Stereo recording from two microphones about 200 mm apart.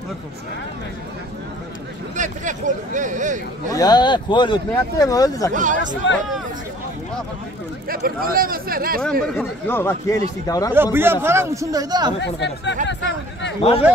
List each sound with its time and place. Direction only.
2.1 s speech: 40° right (ahead or behind)
3.7 s speech: 20° left (ahead or behind)
5.5 s speech: 40° right (ahead or behind)
7.9 s speech: 45° right (ahead or behind)
9.2 s speech: 10° left (ahead or behind)
10.7 s a man's voice: 10° right (ahead or behind)
12.2 s speech: 60° left (ahead or behind)
13.6 s speech: 30° left (ahead or behind)